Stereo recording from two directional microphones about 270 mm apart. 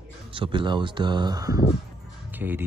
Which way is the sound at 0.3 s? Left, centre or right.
Centre.